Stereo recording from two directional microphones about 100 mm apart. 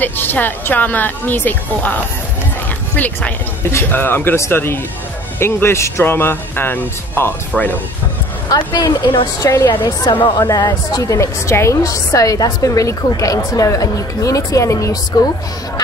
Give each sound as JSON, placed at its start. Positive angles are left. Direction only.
{"t": 0.0, "sound": "speech", "side_deg": 20}
{"t": 3.0, "sound": "speech", "side_deg": 20}
{"t": 8.5, "sound": "a woman's voice", "side_deg": 40}
{"t": 9.4, "sound": "a woman's voice", "side_deg": 35}
{"t": 10.3, "sound": "a woman's voice", "side_deg": 40}